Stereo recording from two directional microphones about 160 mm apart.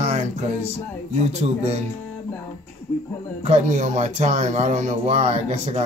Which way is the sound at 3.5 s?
50° right (ahead or behind).